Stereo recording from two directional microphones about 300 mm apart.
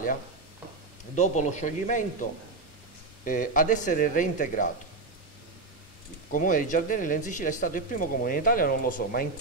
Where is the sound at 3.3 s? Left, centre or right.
Left.